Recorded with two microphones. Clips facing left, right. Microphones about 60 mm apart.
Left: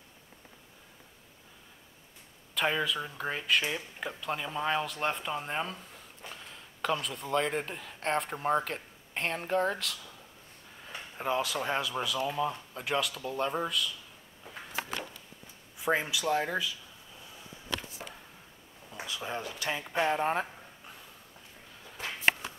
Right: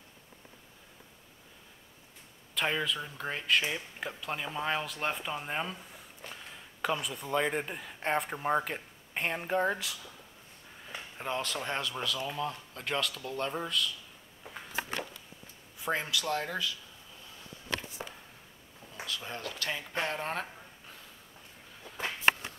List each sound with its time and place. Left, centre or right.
2.5 s speech: centre
6.8 s speech: centre
10.9 s speech: centre
15.8 s speech: centre
18.9 s speech: centre